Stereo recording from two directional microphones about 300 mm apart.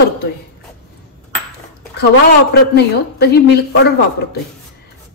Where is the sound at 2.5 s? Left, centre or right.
Left.